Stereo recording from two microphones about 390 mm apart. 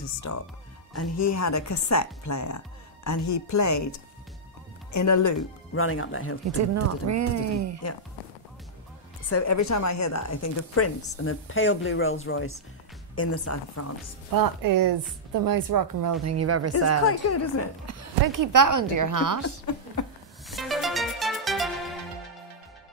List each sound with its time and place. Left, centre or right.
0.3 s speech: left
4.9 s speech: left
5.8 s speech: left
6.6 s a woman's voice: right
9.3 s speech: left
14.3 s a woman's voice: right
17.0 s speech: left
18.2 s a woman's voice: right
20.4 s music: centre